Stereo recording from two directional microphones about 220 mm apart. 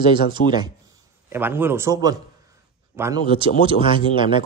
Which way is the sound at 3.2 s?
25° right (ahead or behind).